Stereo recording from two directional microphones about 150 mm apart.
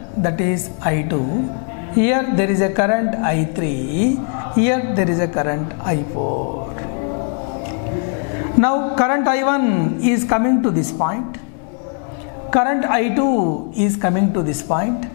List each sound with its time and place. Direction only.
0.2 s a man's voice: 10° left (ahead or behind)
4.6 s a man's voice: 5° left (ahead or behind)
8.5 s a man's voice: 10° left (ahead or behind)
12.4 s a man's voice: 10° left (ahead or behind)